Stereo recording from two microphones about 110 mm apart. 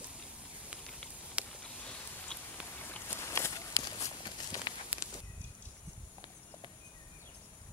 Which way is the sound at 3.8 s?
35° left (ahead or behind).